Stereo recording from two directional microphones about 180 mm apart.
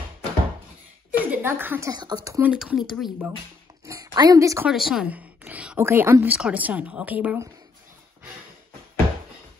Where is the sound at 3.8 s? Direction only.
15° right (ahead or behind).